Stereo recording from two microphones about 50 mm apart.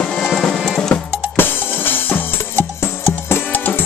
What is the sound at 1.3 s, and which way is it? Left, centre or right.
Drum kit, left.